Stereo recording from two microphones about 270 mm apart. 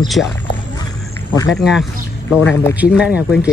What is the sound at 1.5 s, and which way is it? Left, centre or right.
Speech, centre.